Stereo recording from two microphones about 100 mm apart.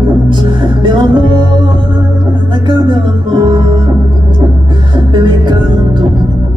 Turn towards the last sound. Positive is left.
turn(degrees=-45)  # may be behind; listen again after turning